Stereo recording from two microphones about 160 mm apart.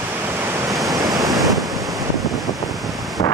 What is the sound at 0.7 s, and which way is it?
Waves, centre (ahead or behind).